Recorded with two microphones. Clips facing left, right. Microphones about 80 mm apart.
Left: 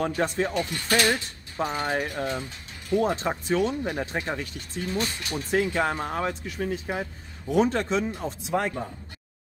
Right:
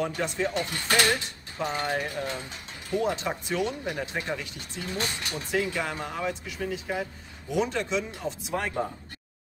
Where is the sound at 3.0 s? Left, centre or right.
Left.